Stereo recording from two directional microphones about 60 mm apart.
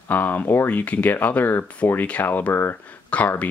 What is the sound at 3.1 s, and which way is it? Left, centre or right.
Speech, left.